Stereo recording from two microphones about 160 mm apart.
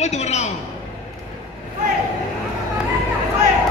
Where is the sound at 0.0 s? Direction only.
45° left (ahead or behind).